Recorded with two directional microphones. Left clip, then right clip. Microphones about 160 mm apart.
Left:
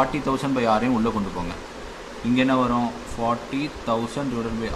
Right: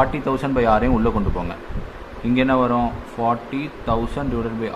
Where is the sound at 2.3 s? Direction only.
15° right (ahead or behind).